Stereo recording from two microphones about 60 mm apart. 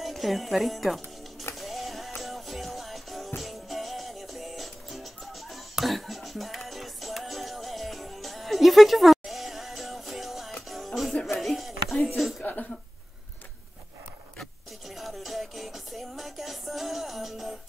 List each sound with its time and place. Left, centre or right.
0.0 s speech: centre
1.6 s music: centre
15.0 s music: centre